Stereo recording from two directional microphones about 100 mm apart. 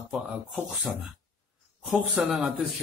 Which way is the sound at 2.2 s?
10° right (ahead or behind).